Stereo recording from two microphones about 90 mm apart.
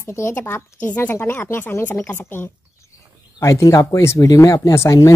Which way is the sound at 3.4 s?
35° left (ahead or behind).